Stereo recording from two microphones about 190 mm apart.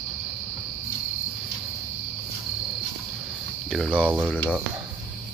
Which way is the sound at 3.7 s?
Centre (ahead or behind).